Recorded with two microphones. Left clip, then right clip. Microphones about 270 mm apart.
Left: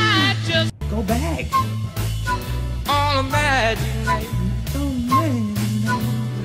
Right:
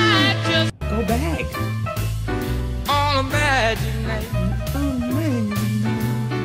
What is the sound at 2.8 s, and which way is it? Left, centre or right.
Music, centre.